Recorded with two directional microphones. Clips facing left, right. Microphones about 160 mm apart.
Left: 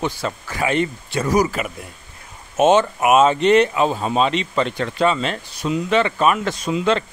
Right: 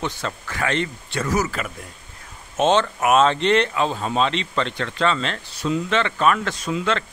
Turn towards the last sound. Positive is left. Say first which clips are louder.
# left 4 dB
turn(degrees=15)  # may be behind; listen again after turning